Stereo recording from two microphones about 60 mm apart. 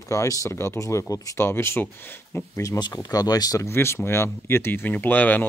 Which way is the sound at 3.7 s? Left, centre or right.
Left.